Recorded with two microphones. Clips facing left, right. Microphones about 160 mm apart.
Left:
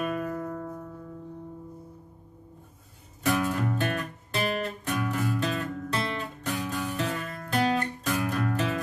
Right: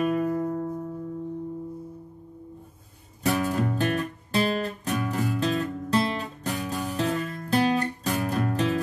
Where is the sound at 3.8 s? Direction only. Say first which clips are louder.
Right 4 dB; 35° right (ahead or behind).